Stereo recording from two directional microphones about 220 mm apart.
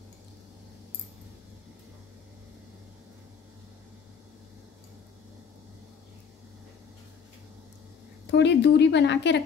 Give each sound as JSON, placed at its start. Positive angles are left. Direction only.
{"t": 8.3, "sound": "a woman's voice", "side_deg": 50}